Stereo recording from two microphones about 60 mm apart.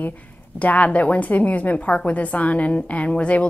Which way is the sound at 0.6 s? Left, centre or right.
Left.